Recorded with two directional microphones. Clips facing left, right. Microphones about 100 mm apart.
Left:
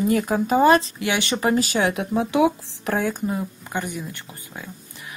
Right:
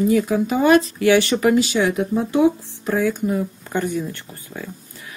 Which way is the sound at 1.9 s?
75° left (ahead or behind).